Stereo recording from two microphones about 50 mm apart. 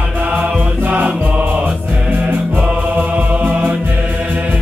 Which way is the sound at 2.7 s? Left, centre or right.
Right.